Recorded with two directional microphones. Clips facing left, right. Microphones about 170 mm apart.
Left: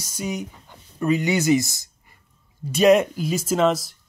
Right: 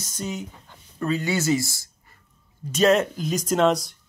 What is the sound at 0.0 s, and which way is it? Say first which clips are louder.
Speech: left 3 dB; 10° left (ahead or behind).